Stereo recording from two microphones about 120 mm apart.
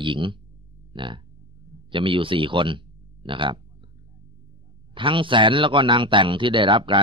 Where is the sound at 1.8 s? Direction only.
45° right (ahead or behind).